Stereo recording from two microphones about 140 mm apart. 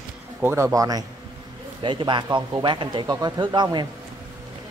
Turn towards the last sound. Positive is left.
turn(degrees=-30)  # may be behind; listen again after turning